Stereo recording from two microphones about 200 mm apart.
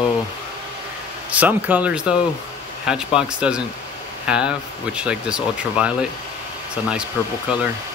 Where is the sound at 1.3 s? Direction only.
10° right (ahead or behind).